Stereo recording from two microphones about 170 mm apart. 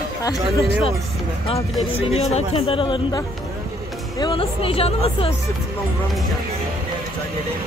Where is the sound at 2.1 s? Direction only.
35° left (ahead or behind).